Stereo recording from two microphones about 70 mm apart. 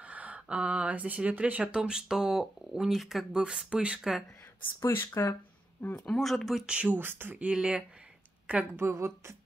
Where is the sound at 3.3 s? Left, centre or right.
Centre.